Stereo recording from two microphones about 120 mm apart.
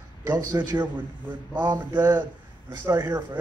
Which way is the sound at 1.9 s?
15° right (ahead or behind).